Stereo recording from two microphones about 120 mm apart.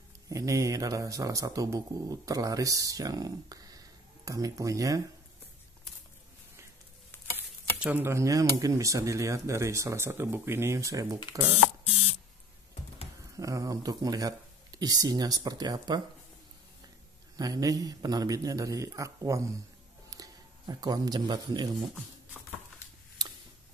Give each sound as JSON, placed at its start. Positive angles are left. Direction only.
{"t": 0.3, "sound": "speech", "side_deg": -25}
{"t": 7.3, "sound": "speech", "side_deg": -15}
{"t": 13.4, "sound": "speech", "side_deg": -30}
{"t": 17.4, "sound": "speech", "side_deg": -30}